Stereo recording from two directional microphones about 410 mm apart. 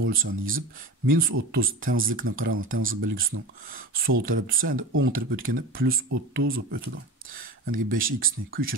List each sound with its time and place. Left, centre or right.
0.0 s speech: right